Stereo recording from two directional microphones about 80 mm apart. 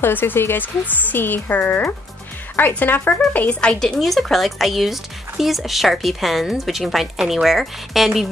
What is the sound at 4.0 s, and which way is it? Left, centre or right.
Speech, centre.